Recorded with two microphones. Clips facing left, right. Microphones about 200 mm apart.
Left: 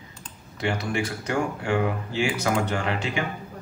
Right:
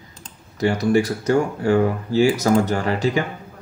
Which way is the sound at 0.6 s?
40° right (ahead or behind).